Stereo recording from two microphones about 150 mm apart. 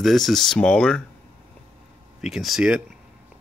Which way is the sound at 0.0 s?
Centre (ahead or behind).